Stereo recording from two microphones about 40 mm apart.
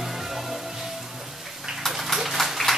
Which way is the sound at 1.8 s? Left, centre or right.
Centre.